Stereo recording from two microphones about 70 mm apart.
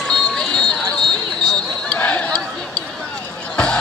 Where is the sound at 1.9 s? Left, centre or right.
Left.